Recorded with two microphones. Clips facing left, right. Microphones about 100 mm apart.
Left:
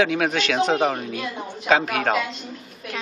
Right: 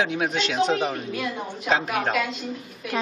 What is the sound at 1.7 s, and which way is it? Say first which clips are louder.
Speech: left 4 dB; 75° left (ahead or behind).